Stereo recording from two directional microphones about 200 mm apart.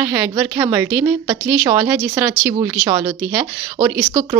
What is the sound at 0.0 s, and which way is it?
A woman's voice, 15° right (ahead or behind).